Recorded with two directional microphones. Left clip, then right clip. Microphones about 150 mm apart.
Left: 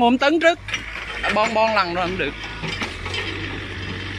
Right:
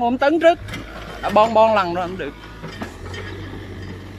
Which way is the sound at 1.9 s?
5° right (ahead or behind).